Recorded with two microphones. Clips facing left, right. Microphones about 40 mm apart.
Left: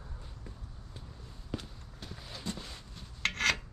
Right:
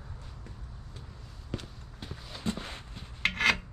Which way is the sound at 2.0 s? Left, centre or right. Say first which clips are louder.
Right 2 dB; centre.